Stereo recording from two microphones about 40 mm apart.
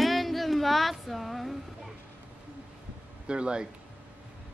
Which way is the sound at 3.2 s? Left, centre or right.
Right.